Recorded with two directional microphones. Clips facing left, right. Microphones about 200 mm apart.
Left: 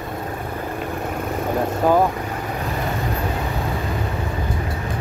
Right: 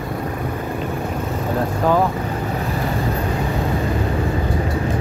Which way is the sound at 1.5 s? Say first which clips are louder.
Left 1 dB; 15° left (ahead or behind).